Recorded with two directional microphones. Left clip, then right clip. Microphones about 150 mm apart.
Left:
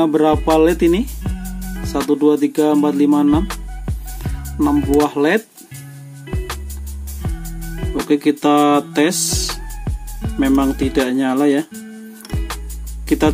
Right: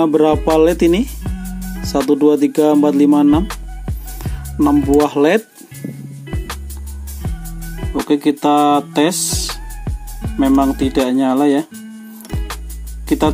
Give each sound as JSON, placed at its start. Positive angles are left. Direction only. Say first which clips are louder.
{"t": 0.0, "sound": "speech", "louder": "right 2 dB", "side_deg": -20}
{"t": 0.6, "sound": "speech", "louder": "right 1 dB", "side_deg": -35}
{"t": 1.2, "sound": "music", "louder": "right 1 dB", "side_deg": 0}
{"t": 2.0, "sound": "speech", "louder": "right 2 dB", "side_deg": -30}
{"t": 3.4, "sound": "music", "louder": "even", "side_deg": 0}
{"t": 4.7, "sound": "speech", "louder": "right 2 dB", "side_deg": 0}
{"t": 5.0, "sound": "speech", "louder": "right 3 dB", "side_deg": -30}
{"t": 6.3, "sound": "music", "louder": "left 1 dB", "side_deg": 0}
{"t": 8.1, "sound": "speech", "louder": "right 1 dB", "side_deg": -10}
{"t": 9.5, "sound": "music", "louder": "even", "side_deg": 0}
{"t": 10.4, "sound": "speech", "louder": "right 2 dB", "side_deg": -10}
{"t": 12.3, "sound": "music", "louder": "even", "side_deg": 0}
{"t": 13.0, "sound": "speech", "louder": "even", "side_deg": -10}